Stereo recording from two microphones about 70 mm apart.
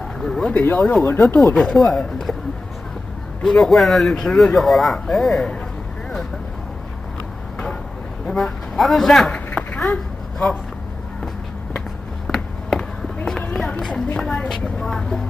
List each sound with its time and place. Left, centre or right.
0.2 s speech: centre
0.5 s speech: centre
0.7 s a woman's voice: centre
1.0 s speech: left
1.4 s a woman's voice: centre
3.4 s speech: centre
8.3 s speech: centre
9.3 s a sound: centre
12.7 s a sound: centre
13.6 s run: centre
14.1 s a woman's voice: centre